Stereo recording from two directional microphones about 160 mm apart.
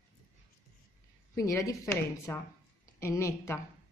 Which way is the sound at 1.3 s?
20° left (ahead or behind).